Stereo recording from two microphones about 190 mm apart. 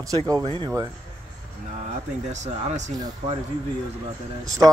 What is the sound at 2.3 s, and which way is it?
Speech, 40° right (ahead or behind).